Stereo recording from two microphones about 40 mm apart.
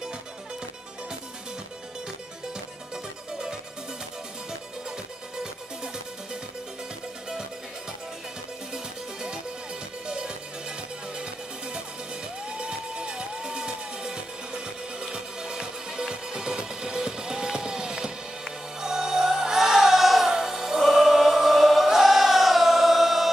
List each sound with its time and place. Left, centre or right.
8.7 s music: centre
12.5 s music: right; by 23.3 s centre